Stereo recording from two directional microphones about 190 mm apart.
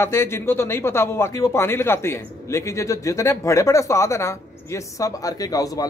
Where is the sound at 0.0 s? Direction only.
15° left (ahead or behind).